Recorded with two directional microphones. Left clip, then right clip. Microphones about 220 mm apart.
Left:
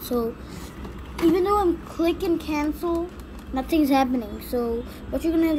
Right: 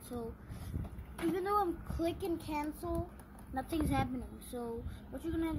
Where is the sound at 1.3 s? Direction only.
10° right (ahead or behind).